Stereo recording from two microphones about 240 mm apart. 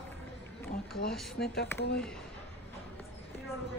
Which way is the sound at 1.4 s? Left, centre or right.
Left.